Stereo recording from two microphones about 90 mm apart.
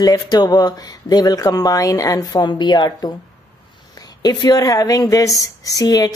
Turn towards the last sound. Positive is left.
turn(degrees=45)  # may be behind; listen again after turning